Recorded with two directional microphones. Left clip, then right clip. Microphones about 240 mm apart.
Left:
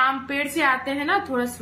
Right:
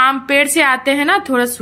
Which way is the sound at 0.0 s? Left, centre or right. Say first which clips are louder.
Right 10 dB; right.